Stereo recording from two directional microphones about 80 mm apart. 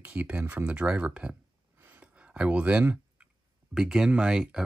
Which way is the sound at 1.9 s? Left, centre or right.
Centre.